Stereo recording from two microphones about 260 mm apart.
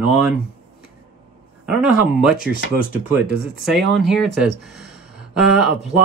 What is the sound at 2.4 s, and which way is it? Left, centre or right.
Speech, left.